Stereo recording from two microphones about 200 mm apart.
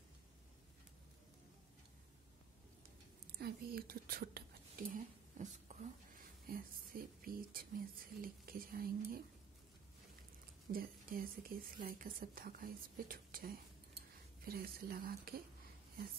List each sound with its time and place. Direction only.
3.3 s a woman's voice: 50° right (ahead or behind)
10.7 s a woman's voice: 45° right (ahead or behind)